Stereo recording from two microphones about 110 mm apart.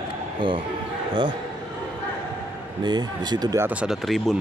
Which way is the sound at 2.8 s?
40° right (ahead or behind).